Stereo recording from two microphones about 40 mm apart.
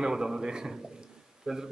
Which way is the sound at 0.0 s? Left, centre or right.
Centre.